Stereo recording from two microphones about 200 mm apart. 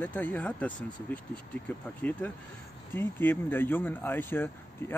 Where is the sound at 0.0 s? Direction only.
10° left (ahead or behind).